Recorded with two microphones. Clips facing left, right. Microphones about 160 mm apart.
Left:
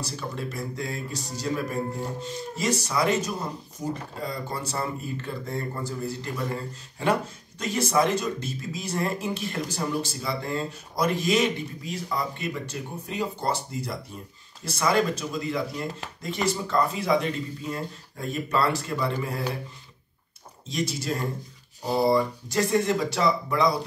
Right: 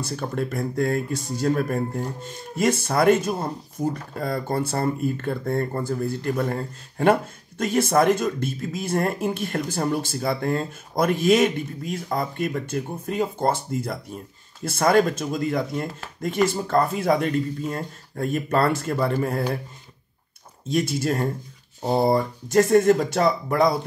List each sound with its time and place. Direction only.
0.0 s speech: 50° right (ahead or behind)
20.6 s speech: 50° right (ahead or behind)